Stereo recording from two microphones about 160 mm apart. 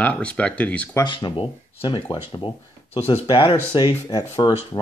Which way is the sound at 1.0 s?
30° left (ahead or behind).